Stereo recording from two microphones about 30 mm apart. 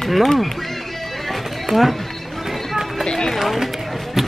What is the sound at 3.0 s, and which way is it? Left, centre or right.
Run, left.